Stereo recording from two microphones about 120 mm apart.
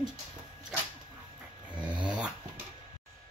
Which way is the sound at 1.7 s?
10° right (ahead or behind).